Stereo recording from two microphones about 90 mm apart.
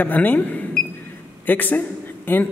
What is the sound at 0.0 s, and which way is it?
A man's voice, 20° left (ahead or behind).